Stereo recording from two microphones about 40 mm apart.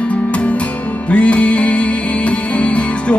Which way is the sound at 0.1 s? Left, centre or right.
Left.